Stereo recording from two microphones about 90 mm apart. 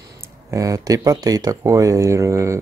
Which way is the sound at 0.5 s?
40° right (ahead or behind).